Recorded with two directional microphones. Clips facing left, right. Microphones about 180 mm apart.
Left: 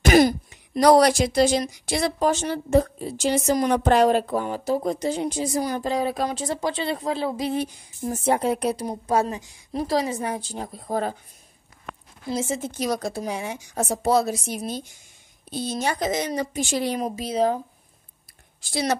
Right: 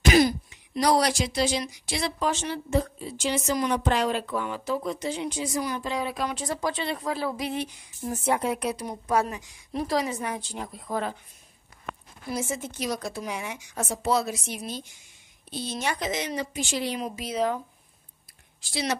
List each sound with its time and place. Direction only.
0.0 s speech: 50° left (ahead or behind); by 7.5 s 25° left (ahead or behind)
7.5 s a woman's voice: 40° left (ahead or behind)
12.3 s a woman's voice: 25° left (ahead or behind)
18.6 s speech: 45° left (ahead or behind)